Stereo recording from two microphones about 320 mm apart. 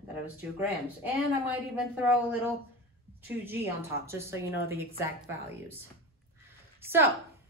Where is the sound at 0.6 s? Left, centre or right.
Centre.